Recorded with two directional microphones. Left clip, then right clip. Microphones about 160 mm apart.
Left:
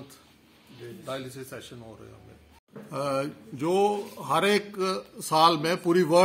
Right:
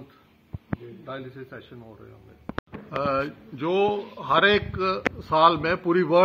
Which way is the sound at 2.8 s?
20° left (ahead or behind).